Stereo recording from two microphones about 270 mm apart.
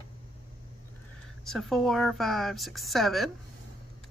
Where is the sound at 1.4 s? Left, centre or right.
Centre.